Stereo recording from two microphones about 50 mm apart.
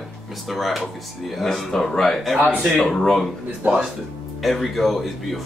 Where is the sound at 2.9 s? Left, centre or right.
Centre.